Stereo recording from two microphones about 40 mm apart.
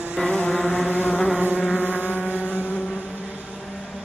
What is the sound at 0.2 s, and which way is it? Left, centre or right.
Vehicle, centre.